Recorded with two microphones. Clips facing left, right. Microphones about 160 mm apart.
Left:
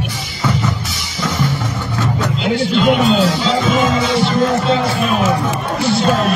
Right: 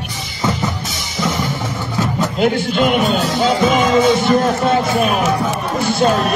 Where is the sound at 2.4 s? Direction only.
55° right (ahead or behind).